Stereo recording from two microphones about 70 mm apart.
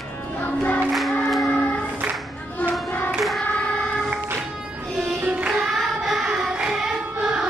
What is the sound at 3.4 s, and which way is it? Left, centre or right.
Child singing, centre.